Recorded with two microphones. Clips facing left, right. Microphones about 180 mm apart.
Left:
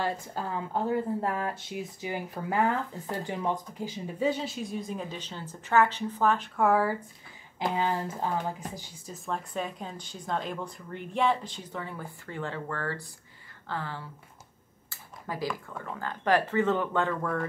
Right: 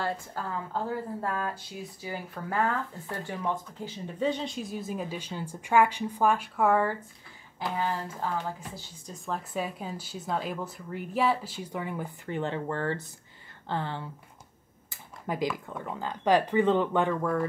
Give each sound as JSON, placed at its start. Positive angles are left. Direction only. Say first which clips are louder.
{"t": 0.0, "sound": "speech", "louder": "left 1 dB", "side_deg": 20}
{"t": 7.5, "sound": "speech", "louder": "left 2 dB", "side_deg": 20}
{"t": 9.1, "sound": "speech", "louder": "even", "side_deg": 0}
{"t": 14.9, "sound": "a sound", "louder": "right 4 dB", "side_deg": -20}
{"t": 15.5, "sound": "speech", "louder": "right 2 dB", "side_deg": -15}